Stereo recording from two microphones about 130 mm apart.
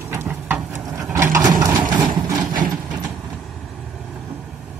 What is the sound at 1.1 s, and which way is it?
Vehicle, 20° right (ahead or behind).